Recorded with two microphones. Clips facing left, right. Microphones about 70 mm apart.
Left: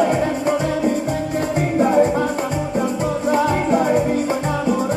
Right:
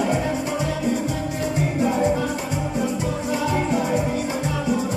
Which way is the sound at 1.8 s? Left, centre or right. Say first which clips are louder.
Left 6 dB; left.